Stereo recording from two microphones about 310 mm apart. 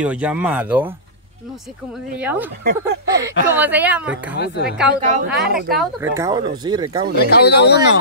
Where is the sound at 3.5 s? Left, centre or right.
Centre.